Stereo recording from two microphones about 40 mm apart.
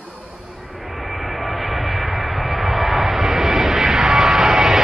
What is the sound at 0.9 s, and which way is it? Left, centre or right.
Vehicle, centre.